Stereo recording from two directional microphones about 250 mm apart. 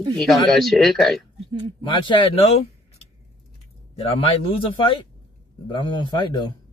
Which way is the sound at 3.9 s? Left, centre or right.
Left.